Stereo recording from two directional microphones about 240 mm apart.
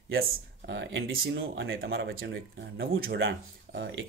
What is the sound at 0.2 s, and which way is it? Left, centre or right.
Speech, right.